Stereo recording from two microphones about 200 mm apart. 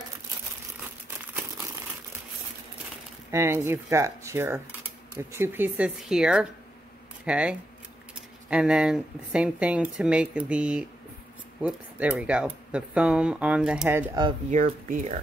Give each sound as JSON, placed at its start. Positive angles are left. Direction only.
{"t": 3.3, "sound": "speech", "side_deg": -15}
{"t": 14.5, "sound": "speech", "side_deg": -40}